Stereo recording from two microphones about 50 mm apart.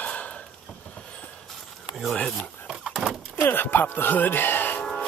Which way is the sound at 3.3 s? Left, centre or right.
Left.